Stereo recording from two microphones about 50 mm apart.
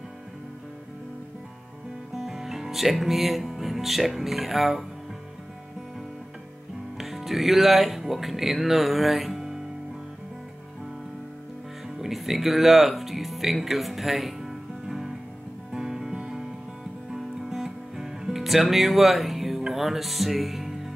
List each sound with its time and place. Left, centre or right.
2.1 s music: centre
7.0 s speech: centre
12.0 s speech: centre
15.7 s music: centre